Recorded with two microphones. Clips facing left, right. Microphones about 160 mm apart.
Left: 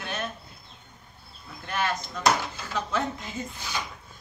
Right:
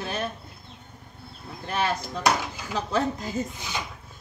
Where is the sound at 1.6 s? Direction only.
30° right (ahead or behind).